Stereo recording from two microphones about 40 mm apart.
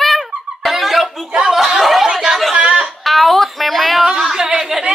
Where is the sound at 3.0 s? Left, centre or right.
Centre.